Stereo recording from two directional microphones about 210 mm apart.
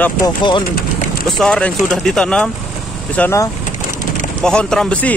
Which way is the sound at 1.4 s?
5° left (ahead or behind).